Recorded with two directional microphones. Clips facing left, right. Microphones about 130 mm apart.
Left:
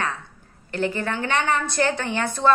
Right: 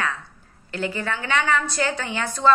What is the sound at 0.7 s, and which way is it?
A woman's voice, 45° left (ahead or behind).